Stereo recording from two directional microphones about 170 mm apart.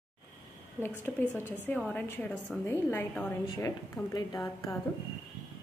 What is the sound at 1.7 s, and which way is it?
A woman's voice, 5° left (ahead or behind).